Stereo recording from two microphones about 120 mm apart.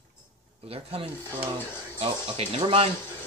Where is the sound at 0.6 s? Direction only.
55° right (ahead or behind).